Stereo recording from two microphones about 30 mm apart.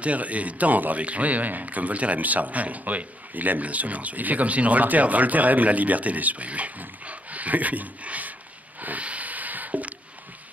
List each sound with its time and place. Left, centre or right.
0.0 s speech: right
1.0 s speech: right
7.1 s dog: right
9.0 s a sound: right